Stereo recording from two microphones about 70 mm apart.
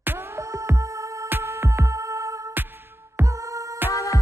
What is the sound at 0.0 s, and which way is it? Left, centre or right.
Music, right.